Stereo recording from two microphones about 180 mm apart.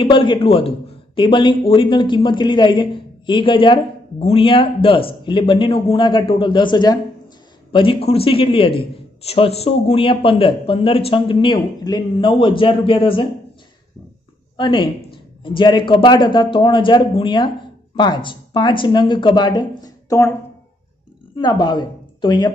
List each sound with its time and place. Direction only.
0.0 s a man's voice: 25° left (ahead or behind)
14.6 s a man's voice: 25° left (ahead or behind)
21.4 s a woman's voice: 25° left (ahead or behind)